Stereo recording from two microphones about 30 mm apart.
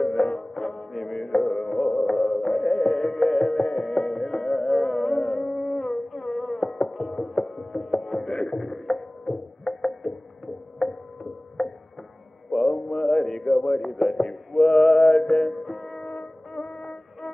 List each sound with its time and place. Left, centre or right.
0.0 s music: centre
0.6 s music: centre
5.3 s a sound: centre
6.3 s music: centre
9.8 s a sound: centre
11.6 s music: centre
12.6 s mantra: centre
13.1 s a sound: centre
14.5 s male singing: centre
15.4 s music: centre
16.1 s music: centre